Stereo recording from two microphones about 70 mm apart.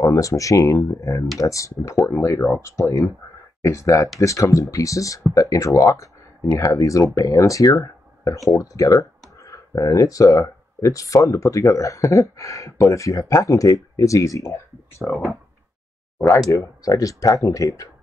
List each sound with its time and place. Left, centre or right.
0.0 s speech: left
16.3 s speech: left